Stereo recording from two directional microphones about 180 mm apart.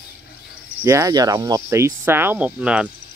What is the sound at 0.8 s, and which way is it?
Speech, 15° right (ahead or behind).